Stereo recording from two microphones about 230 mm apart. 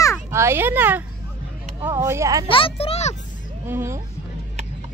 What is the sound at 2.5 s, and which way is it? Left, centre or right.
Speech, left.